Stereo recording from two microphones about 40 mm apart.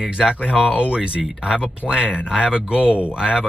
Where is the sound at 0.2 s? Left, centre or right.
Centre.